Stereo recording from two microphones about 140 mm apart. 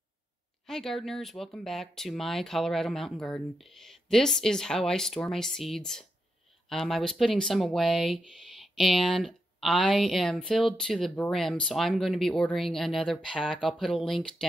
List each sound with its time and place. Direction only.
0.7 s speech: centre (ahead or behind)